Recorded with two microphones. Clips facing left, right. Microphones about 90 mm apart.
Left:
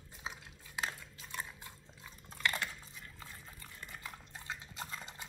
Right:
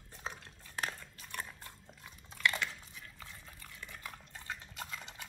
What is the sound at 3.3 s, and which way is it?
Dog, 5° left (ahead or behind).